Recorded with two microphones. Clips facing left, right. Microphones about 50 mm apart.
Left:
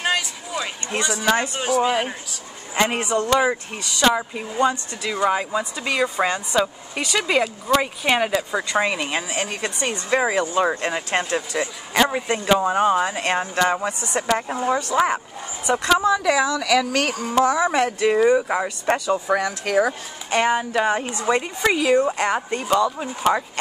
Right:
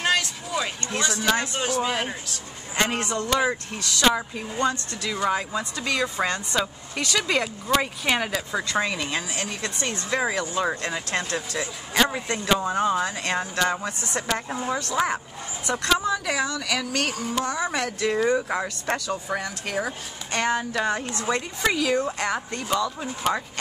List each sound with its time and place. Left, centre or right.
0.0 s a sound: centre
1.0 s speech: centre
16.3 s speech: left
17.6 s speech: left
18.2 s speech: centre
19.0 s speech: left